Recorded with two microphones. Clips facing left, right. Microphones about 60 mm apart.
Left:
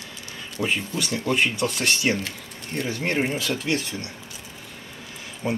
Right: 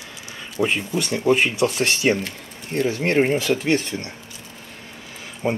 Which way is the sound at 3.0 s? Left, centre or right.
Right.